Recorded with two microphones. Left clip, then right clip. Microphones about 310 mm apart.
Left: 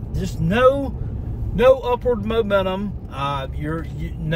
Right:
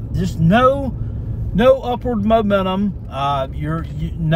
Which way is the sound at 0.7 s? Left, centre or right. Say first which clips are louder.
Even; centre.